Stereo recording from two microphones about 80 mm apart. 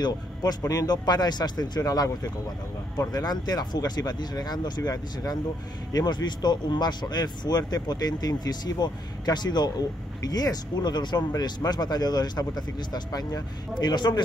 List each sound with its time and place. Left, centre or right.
0.0 s speech: left
5.9 s speech: left